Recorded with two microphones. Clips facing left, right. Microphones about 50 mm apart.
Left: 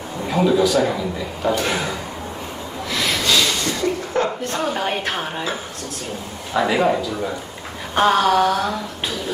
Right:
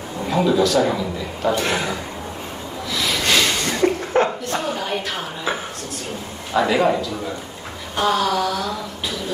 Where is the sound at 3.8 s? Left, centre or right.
Right.